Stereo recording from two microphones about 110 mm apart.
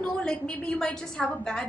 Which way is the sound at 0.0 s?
5° left (ahead or behind).